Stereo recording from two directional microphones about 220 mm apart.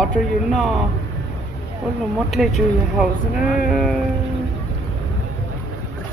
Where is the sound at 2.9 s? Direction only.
5° right (ahead or behind).